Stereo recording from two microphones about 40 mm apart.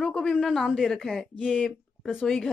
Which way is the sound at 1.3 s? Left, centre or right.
Left.